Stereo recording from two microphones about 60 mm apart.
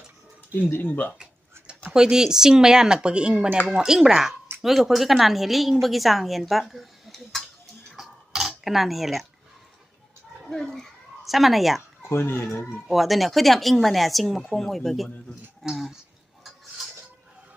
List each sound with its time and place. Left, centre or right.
0.7 s speech: left
1.1 s tick-tock: centre
1.9 s a woman's voice: centre
7.9 s cutlery: centre
10.5 s speech: centre
12.2 s speech: left
12.8 s a woman's voice: centre